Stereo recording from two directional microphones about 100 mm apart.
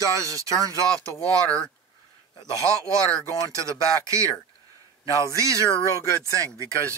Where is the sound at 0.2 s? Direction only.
35° right (ahead or behind).